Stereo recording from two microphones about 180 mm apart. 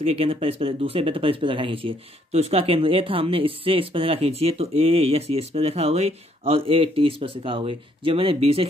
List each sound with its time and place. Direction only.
0.0 s speech: 35° right (ahead or behind)